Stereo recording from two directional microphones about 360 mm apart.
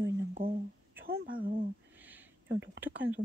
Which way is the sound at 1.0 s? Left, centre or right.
Right.